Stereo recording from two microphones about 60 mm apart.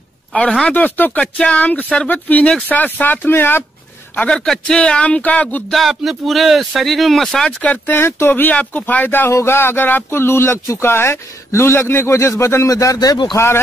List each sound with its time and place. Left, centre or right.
0.3 s a man's voice: left
4.3 s a man's voice: centre
5.7 s speech: centre
7.4 s a man's voice: left
7.8 s a man's voice: left
9.3 s speech: left
12.6 s speech: left